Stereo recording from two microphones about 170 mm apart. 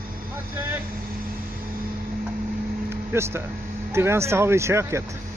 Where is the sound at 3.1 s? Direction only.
15° right (ahead or behind).